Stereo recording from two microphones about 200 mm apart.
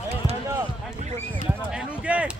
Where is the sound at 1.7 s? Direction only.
5° right (ahead or behind).